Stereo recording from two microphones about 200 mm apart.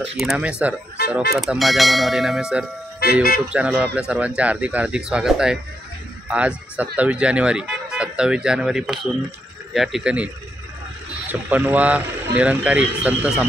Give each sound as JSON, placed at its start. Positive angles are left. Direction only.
{"t": 0.2, "sound": "speech", "side_deg": -5}
{"t": 3.0, "sound": "speech", "side_deg": 50}
{"t": 3.4, "sound": "speech", "side_deg": -5}